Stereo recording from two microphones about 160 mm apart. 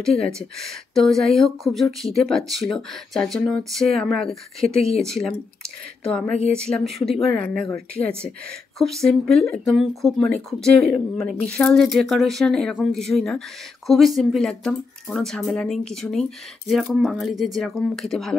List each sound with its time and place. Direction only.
0.4 s speech: centre (ahead or behind)